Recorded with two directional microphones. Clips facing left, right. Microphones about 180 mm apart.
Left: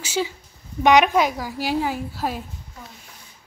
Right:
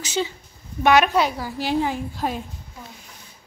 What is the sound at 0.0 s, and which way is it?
A woman's voice, 10° left (ahead or behind).